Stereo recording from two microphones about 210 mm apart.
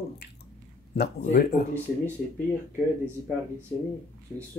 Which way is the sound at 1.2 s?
45° left (ahead or behind).